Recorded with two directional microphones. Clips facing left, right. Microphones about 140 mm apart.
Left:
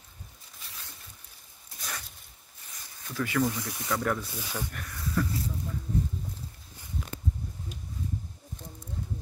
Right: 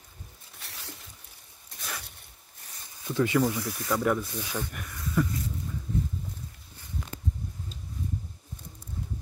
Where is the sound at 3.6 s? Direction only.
20° left (ahead or behind).